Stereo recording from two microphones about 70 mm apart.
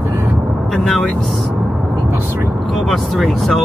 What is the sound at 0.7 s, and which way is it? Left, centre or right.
Speech, centre.